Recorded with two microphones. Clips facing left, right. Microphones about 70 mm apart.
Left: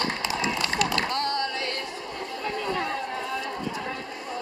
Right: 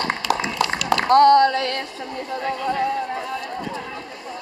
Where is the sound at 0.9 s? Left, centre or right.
Right.